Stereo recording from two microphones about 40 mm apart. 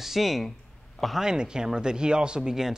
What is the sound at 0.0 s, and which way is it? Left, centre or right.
Speech, centre.